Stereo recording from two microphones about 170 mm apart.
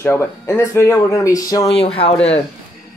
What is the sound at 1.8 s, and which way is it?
Speech, 35° left (ahead or behind).